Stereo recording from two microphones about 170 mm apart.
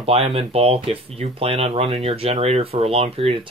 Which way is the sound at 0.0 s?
35° right (ahead or behind).